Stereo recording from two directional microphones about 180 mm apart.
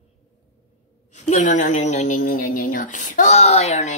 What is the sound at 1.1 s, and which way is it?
A woman's voice, 40° left (ahead or behind).